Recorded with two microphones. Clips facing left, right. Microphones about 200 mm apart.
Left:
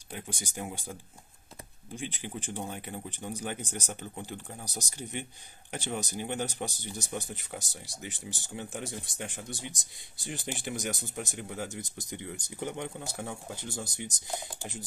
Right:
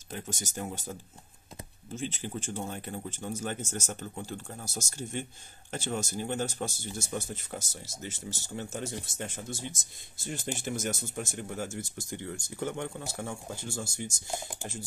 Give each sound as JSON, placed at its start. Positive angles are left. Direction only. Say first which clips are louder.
{"t": 0.1, "sound": "speech", "louder": "right 2 dB", "side_deg": 10}
{"t": 2.0, "sound": "speech", "louder": "right 3 dB", "side_deg": 15}